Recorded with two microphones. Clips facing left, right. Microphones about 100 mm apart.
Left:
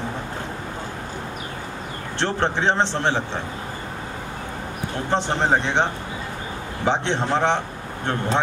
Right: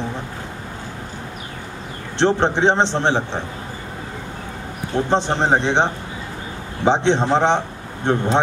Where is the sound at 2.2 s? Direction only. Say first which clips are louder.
Right 6 dB; 20° right (ahead or behind).